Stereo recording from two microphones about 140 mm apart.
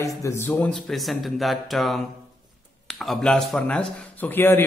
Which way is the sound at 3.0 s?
Centre (ahead or behind).